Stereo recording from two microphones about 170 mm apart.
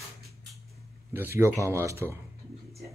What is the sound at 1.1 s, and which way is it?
Speech, 15° right (ahead or behind).